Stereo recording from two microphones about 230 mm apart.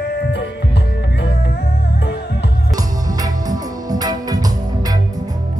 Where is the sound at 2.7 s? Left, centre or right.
Centre.